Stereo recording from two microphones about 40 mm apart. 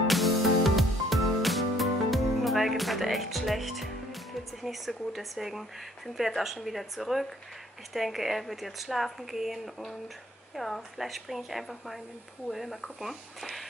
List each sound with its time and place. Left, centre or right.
0.0 s music: centre
6.1 s speech: centre